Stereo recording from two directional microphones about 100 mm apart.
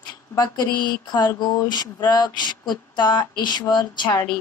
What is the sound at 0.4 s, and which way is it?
Speech, 45° left (ahead or behind).